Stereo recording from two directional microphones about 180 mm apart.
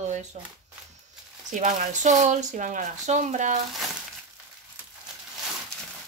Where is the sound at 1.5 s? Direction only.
45° right (ahead or behind).